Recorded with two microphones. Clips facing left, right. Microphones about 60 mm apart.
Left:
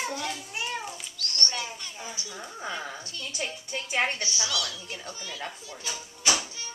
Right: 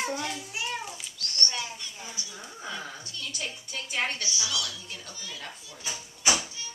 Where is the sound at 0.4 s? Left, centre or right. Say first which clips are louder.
Left 1 dB; centre.